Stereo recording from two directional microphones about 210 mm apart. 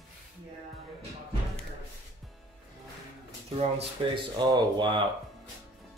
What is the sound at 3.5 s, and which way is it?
Speech, 25° right (ahead or behind).